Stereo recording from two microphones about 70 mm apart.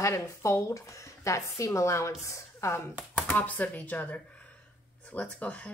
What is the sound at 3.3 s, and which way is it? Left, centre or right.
Speech, left.